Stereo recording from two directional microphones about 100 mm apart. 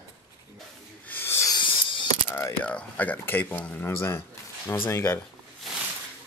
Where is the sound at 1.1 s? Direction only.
20° left (ahead or behind).